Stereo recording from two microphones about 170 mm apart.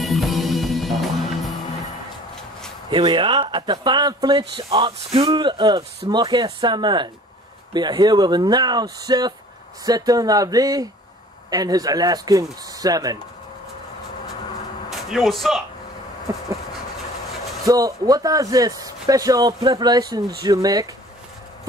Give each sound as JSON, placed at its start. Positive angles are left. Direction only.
{"t": 0.0, "sound": "music", "side_deg": 0}
{"t": 2.9, "sound": "speech", "side_deg": -30}
{"t": 14.9, "sound": "speech", "side_deg": 0}
{"t": 17.6, "sound": "speech", "side_deg": -20}